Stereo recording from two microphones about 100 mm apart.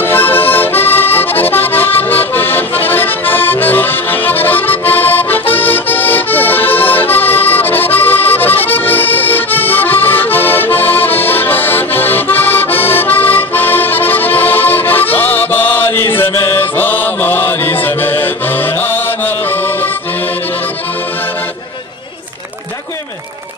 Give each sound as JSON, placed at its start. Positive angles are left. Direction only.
{"t": 0.0, "sound": "accordion", "side_deg": 20}
{"t": 17.8, "sound": "music", "side_deg": 20}